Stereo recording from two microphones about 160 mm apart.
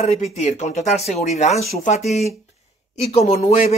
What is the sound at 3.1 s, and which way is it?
Speech, 40° left (ahead or behind).